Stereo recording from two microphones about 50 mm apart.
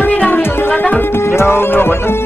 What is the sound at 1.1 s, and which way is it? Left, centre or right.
Music, left.